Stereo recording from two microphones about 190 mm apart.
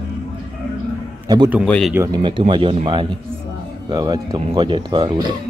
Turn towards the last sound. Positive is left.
turn(degrees=-25)  # may be behind; listen again after turning